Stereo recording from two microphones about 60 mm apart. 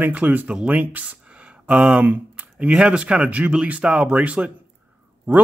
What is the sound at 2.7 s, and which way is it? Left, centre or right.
Speech, centre.